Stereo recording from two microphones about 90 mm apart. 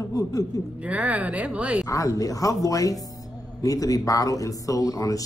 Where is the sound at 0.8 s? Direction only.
15° right (ahead or behind).